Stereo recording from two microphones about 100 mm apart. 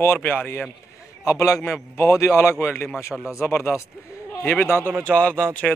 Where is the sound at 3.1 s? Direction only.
Centre (ahead or behind).